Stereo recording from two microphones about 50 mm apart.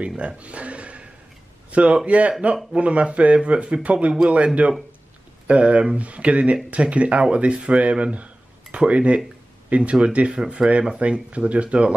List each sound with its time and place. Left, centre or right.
0.2 s speech: right